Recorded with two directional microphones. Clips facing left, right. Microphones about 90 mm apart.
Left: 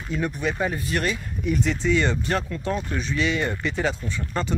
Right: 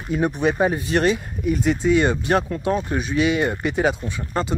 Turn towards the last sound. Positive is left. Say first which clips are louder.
# right 3 dB
turn(degrees=-15)  # may be behind; listen again after turning